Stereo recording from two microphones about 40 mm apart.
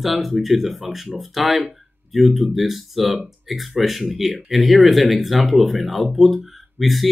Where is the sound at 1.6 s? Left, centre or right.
Centre.